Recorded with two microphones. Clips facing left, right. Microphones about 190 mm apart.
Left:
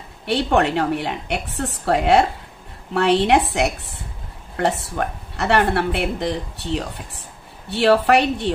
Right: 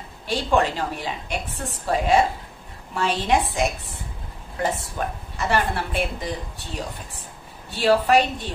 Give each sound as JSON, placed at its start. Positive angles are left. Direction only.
{"t": 0.3, "sound": "speech", "side_deg": 65}